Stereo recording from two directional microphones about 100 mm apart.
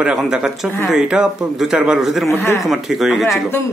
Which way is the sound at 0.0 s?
5° right (ahead or behind).